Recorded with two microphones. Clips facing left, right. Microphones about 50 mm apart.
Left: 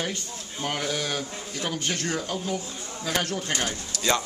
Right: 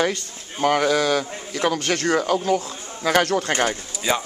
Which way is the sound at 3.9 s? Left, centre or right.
Centre.